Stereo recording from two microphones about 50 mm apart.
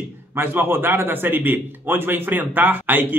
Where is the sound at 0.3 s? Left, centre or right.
Right.